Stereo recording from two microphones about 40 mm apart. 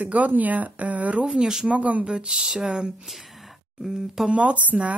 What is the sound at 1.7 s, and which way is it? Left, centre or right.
Speech, right.